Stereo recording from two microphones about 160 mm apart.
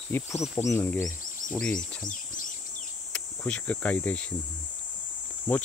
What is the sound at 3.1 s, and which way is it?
Cricket, 5° left (ahead or behind).